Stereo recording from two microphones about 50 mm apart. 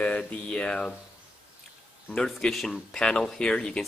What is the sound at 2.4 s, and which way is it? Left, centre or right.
Speech, centre.